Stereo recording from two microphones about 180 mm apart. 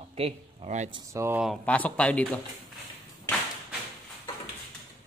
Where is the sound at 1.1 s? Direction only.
15° right (ahead or behind).